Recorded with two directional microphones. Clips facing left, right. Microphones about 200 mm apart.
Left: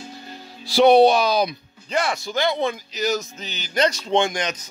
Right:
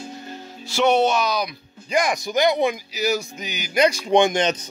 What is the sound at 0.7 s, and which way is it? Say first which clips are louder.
Speech: left 5 dB; 35° left (ahead or behind).